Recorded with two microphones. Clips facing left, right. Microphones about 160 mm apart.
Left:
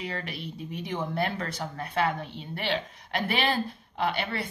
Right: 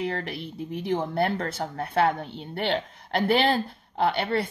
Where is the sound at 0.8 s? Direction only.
55° right (ahead or behind).